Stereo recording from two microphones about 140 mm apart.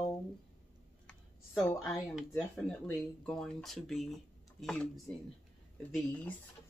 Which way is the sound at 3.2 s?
5° left (ahead or behind).